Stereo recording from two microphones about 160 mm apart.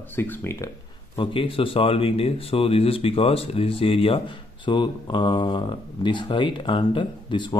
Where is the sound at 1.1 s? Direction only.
35° left (ahead or behind).